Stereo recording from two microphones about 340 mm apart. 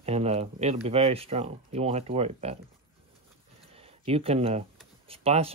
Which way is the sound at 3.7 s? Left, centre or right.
Centre.